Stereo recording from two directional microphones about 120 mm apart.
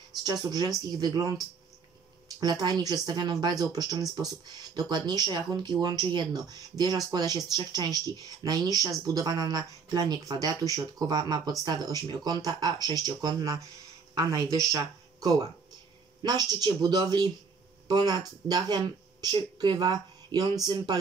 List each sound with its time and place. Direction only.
0.2 s speech: 35° right (ahead or behind)